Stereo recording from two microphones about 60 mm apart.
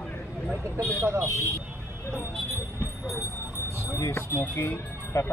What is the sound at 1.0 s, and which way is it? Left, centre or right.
Speech, right.